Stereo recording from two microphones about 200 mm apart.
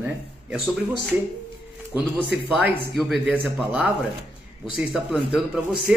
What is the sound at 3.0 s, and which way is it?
A man's voice, centre (ahead or behind).